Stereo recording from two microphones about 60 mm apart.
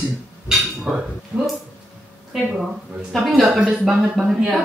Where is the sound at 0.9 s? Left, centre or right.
Centre.